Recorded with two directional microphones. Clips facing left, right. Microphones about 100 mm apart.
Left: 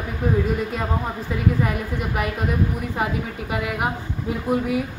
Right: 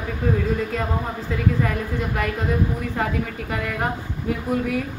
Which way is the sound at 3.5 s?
15° left (ahead or behind).